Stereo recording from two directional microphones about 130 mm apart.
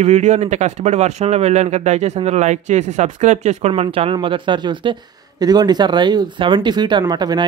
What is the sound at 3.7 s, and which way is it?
Speech, 45° right (ahead or behind).